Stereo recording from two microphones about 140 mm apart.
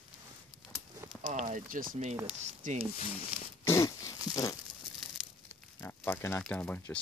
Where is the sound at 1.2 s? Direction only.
70° right (ahead or behind).